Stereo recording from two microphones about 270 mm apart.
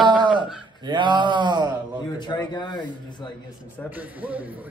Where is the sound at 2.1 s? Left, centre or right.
Centre.